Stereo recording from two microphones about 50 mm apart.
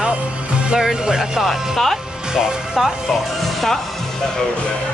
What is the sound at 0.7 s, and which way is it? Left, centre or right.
Speech, centre.